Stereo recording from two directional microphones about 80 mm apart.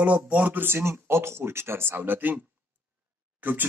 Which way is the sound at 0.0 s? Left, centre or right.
Centre.